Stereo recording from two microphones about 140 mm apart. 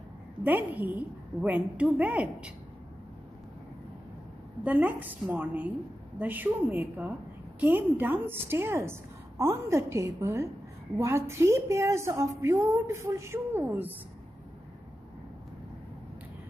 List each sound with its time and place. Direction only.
0.4 s a woman's voice: 15° right (ahead or behind)
4.6 s a woman's voice: 10° right (ahead or behind)